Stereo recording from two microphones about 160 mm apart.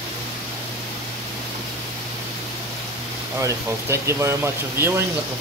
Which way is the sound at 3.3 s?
20° right (ahead or behind).